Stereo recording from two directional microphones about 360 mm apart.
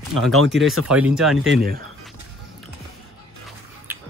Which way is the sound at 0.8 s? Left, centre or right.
Centre.